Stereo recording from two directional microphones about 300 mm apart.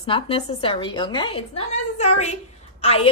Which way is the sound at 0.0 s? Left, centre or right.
Centre.